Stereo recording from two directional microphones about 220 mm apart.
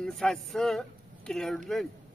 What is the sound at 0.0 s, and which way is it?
Speech, centre (ahead or behind).